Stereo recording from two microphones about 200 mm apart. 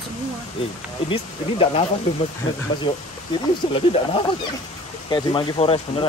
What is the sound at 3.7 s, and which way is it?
Speech, 30° left (ahead or behind).